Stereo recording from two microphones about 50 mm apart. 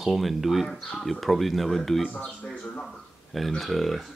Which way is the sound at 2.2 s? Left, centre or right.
Left.